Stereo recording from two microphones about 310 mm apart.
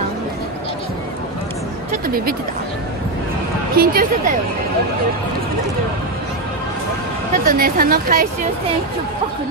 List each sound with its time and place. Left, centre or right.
3.7 s a woman's voice: right
7.4 s a woman's voice: right